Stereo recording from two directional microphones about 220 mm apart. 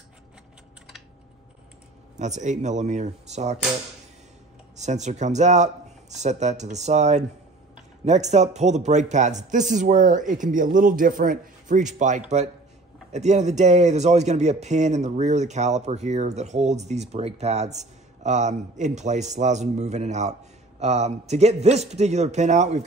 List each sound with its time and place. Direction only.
2.1 s a man's voice: 30° right (ahead or behind)
4.7 s a man's voice: 30° right (ahead or behind)